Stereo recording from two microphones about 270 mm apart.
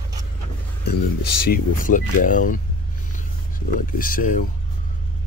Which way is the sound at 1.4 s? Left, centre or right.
Left.